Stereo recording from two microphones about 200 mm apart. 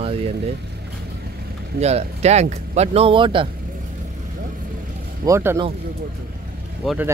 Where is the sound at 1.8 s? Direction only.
30° right (ahead or behind).